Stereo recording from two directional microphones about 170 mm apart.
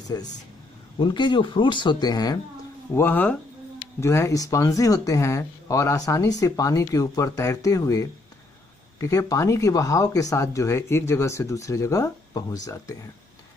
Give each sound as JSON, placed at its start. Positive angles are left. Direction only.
{"t": 0.1, "sound": "speech", "side_deg": 20}